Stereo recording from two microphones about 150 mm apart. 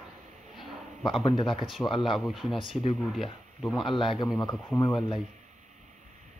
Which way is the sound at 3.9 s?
35° left (ahead or behind).